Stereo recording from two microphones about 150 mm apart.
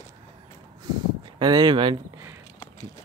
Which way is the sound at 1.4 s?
30° right (ahead or behind).